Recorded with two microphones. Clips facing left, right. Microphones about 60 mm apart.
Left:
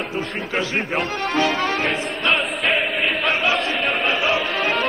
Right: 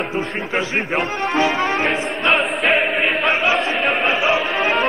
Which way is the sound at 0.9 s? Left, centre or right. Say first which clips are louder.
Right 3 dB; right.